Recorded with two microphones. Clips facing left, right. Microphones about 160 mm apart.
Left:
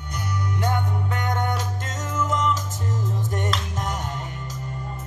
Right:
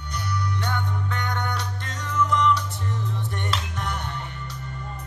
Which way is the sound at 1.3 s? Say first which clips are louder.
Left 4 dB; 45° left (ahead or behind).